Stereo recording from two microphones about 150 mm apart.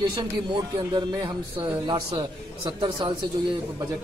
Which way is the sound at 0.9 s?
30° right (ahead or behind).